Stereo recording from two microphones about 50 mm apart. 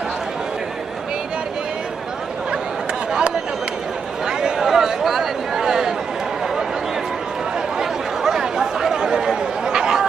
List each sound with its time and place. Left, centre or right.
3.1 s chatter: centre
4.3 s a sound: centre
7.8 s chatter: centre